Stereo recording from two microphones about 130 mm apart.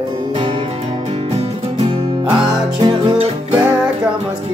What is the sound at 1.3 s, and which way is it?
Music, 50° right (ahead or behind).